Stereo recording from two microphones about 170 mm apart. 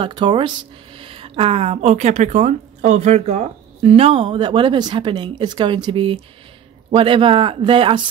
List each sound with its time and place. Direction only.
0.0 s speech: 25° right (ahead or behind)